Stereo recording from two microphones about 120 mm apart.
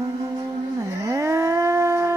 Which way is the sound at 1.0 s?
25° right (ahead or behind).